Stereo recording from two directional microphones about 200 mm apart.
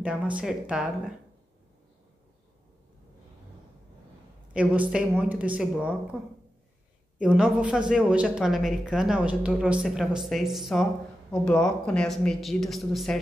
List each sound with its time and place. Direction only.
0.0 s speech: 5° right (ahead or behind)
4.6 s speech: 5° right (ahead or behind)
7.2 s speech: 5° right (ahead or behind)